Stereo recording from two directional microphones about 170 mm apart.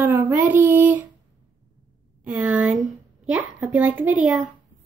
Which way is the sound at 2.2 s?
5° right (ahead or behind).